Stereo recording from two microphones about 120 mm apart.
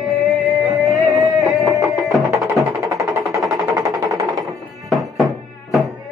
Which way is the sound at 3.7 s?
30° right (ahead or behind).